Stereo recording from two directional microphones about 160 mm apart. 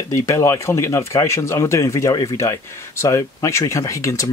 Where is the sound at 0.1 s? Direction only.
20° left (ahead or behind).